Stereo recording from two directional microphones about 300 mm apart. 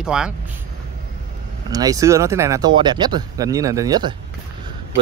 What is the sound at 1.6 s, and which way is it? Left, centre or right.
Speech, centre.